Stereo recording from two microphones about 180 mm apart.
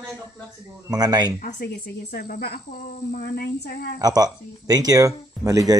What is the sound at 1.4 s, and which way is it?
Speech, 60° left (ahead or behind).